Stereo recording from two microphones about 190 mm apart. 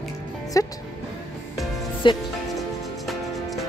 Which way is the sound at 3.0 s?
Centre (ahead or behind).